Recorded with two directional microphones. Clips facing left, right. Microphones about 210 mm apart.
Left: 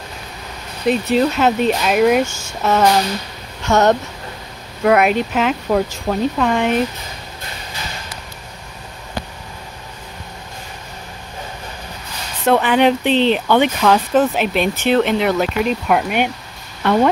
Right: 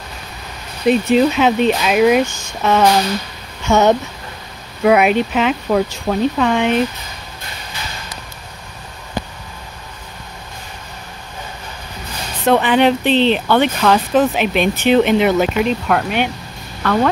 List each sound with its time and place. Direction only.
0.8 s speech: centre (ahead or behind)
12.4 s speech: 10° left (ahead or behind)
14.8 s speech: 10° right (ahead or behind); by 17.1 s 15° left (ahead or behind)